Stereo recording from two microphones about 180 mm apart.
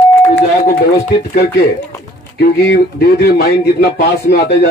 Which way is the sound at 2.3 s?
65° left (ahead or behind).